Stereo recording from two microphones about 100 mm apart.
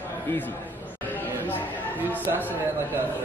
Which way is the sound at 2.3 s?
20° right (ahead or behind).